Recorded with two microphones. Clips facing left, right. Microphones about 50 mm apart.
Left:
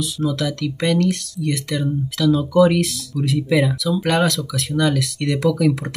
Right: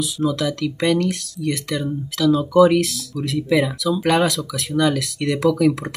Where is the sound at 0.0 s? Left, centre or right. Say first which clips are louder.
Right 1 dB; centre.